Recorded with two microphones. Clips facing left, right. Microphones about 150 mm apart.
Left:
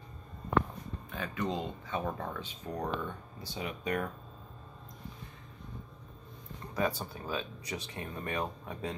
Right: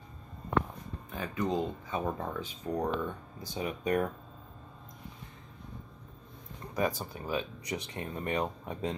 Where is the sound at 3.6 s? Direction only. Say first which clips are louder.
Right 4 dB; 35° right (ahead or behind).